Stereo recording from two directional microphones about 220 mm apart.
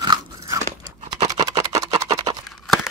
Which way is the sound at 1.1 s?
15° right (ahead or behind).